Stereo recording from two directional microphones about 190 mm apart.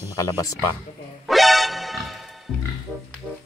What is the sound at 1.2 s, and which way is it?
Music, centre (ahead or behind).